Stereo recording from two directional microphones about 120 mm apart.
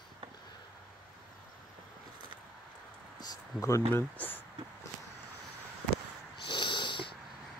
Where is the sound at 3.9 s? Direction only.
15° left (ahead or behind).